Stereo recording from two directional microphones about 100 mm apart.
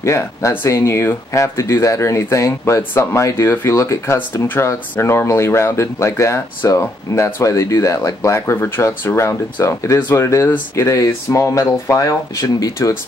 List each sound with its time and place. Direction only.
0.0 s speech: 30° left (ahead or behind)